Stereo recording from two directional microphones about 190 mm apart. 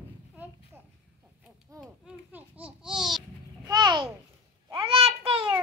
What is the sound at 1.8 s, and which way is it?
Babbling, 5° right (ahead or behind).